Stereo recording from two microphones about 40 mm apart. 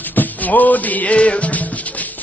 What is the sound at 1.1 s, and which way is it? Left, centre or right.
Music, left.